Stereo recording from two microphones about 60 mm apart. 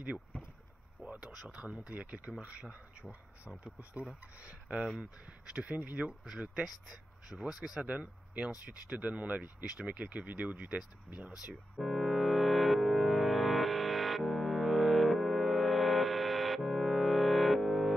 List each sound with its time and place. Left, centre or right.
1.1 s speech: centre
7.9 s speech: centre
11.8 s music: centre